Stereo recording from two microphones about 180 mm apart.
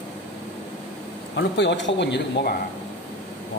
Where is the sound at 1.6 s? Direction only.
85° left.